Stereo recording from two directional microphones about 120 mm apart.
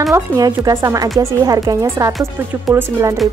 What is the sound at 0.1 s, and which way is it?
Speech, 30° right (ahead or behind).